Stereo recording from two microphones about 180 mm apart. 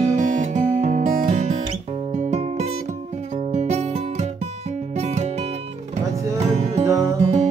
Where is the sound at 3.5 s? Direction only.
40° right (ahead or behind).